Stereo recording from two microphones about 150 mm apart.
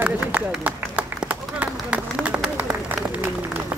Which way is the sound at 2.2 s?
10° right (ahead or behind).